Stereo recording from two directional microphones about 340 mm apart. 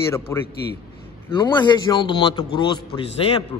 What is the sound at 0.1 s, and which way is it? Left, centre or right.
Speech, centre.